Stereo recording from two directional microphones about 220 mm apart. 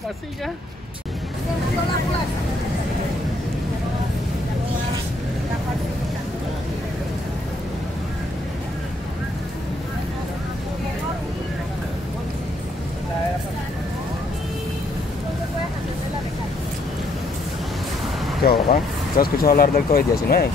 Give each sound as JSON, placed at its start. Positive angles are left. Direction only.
{"t": 18.4, "sound": "speech", "side_deg": 40}